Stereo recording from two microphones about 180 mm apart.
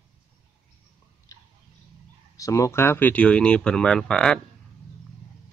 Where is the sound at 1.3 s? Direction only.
20° left (ahead or behind).